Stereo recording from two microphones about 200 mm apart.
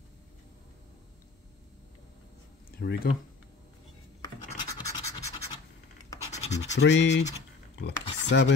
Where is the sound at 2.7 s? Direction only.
50° left (ahead or behind).